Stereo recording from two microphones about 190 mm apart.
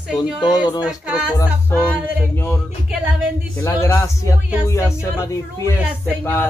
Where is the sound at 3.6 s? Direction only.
15° left (ahead or behind).